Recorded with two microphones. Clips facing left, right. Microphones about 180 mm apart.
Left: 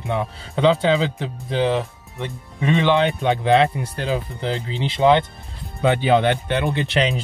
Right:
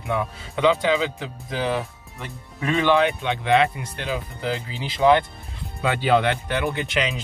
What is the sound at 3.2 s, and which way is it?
Speech, 35° left (ahead or behind).